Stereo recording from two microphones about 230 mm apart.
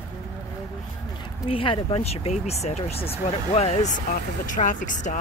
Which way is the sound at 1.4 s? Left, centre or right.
Left.